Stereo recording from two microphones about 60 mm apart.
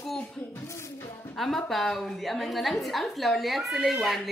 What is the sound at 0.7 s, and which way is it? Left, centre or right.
Music, left.